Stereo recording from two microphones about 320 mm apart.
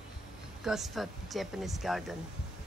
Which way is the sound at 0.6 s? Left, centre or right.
Centre.